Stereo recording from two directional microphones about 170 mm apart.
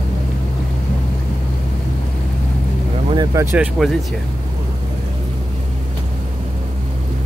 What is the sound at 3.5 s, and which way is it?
Speech, 5° right (ahead or behind).